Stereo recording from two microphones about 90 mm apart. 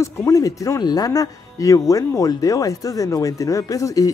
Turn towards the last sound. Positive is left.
turn(degrees=40)  # may be behind; listen again after turning